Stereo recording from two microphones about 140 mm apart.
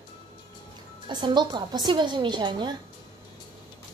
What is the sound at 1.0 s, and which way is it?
A woman's voice, 30° right (ahead or behind).